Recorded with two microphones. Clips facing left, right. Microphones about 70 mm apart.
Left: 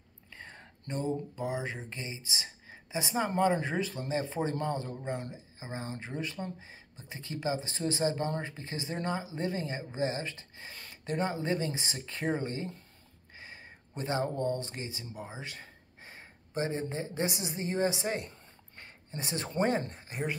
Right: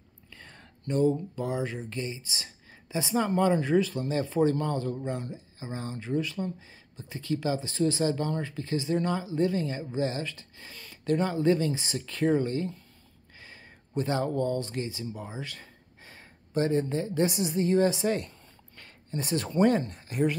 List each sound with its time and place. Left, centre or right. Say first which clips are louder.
0.3 s speech: left 2 dB; left